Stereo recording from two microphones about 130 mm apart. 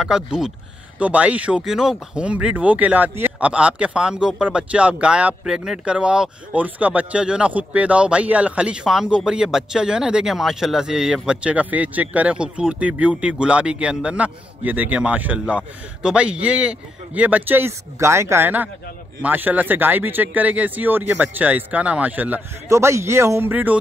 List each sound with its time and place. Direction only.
0.0 s speech: 5° right (ahead or behind)